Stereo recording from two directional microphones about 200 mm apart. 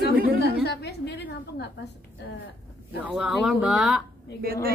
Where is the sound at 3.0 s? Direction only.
5° right (ahead or behind).